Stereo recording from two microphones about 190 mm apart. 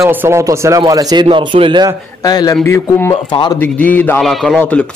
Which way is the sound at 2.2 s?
20° left (ahead or behind).